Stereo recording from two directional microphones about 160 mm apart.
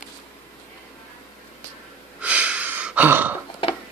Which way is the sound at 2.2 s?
10° right (ahead or behind).